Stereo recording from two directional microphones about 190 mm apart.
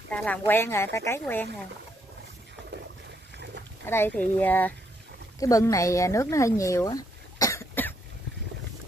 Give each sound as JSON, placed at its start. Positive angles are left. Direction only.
{"t": 0.1, "sound": "speech", "side_deg": 10}
{"t": 3.8, "sound": "speech", "side_deg": 10}